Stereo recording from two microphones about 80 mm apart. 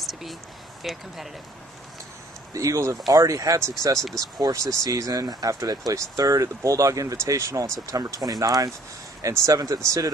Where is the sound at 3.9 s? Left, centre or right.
Centre.